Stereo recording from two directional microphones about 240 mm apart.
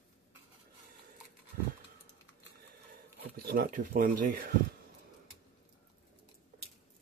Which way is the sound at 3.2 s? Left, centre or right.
Right.